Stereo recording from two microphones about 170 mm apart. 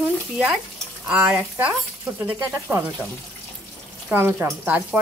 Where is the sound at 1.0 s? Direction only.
10° right (ahead or behind).